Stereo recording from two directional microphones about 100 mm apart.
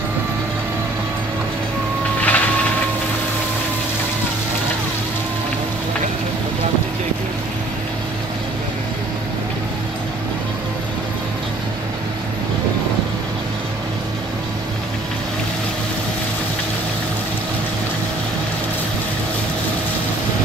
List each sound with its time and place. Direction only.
2.2 s vehicle: 15° left (ahead or behind)